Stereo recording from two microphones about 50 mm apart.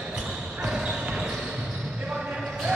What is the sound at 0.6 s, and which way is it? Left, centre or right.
Basketball bounce, centre.